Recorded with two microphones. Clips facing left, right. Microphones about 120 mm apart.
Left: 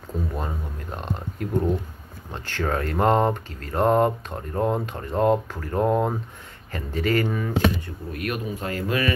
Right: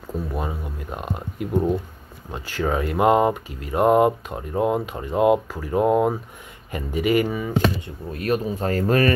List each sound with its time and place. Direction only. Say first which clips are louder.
0.3 s speech: right 2 dB; 5° right (ahead or behind)
7.8 s speech: right 2 dB; 30° right (ahead or behind)